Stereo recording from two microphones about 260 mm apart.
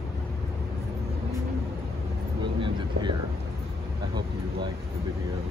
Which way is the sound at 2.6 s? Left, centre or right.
Centre.